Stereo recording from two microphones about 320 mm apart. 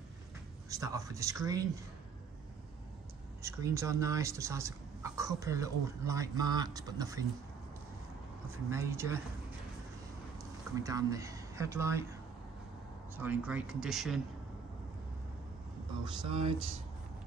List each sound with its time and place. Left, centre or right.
0.7 s speech: centre
3.4 s speech: centre
8.6 s speech: centre
10.8 s speech: centre
16.0 s speech: centre